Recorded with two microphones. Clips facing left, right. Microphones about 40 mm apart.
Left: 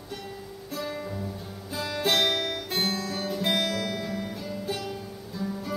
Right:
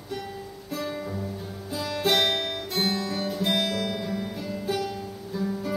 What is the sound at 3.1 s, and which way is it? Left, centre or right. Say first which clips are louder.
Music: right 1 dB; centre.